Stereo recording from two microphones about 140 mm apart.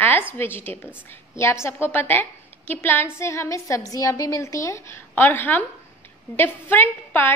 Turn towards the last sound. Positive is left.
turn(degrees=15)  # may be behind; listen again after turning